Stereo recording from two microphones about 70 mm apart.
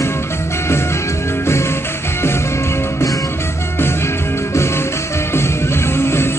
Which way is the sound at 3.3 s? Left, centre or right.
Left.